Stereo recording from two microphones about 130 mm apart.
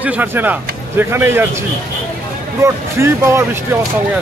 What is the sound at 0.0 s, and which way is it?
Speech, 10° right (ahead or behind).